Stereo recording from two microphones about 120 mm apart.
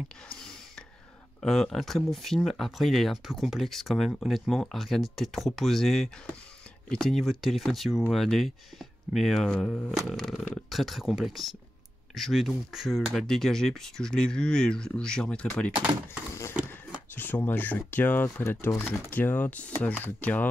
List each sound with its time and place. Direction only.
0.3 s a sound: 5° left (ahead or behind)
1.4 s speech: 5° left (ahead or behind)
17.1 s speech: 15° left (ahead or behind)